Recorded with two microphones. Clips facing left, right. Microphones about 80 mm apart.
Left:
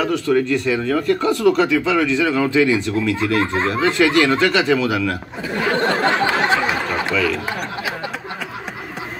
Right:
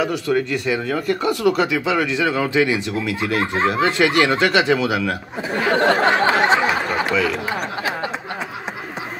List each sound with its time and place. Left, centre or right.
0.3 s speech: centre
5.9 s a sound: right
7.1 s speech: right